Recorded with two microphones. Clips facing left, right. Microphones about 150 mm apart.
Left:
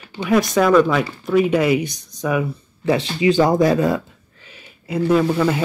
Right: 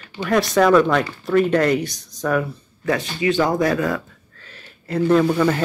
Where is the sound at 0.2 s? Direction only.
5° right (ahead or behind).